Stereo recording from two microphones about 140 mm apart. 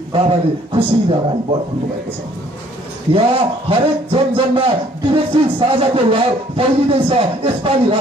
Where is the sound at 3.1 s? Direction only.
40° right (ahead or behind).